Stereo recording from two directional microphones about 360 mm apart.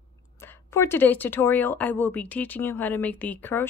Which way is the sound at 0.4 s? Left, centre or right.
Centre.